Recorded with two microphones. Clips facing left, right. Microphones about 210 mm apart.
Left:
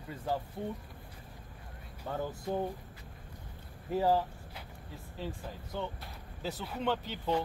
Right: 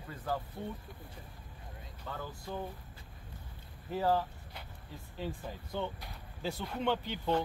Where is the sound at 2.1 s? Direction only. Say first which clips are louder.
Left 6 dB; 45° left (ahead or behind).